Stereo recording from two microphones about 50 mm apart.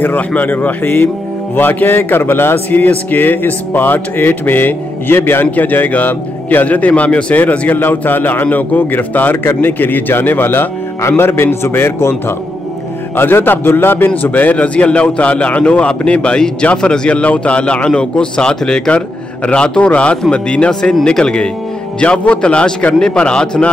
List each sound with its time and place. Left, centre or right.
0.3 s music: left
1.5 s a man's voice: left
2.8 s music: left
11.1 s a man's voice: left
13.1 s a man's voice: left; by 23.6 s centre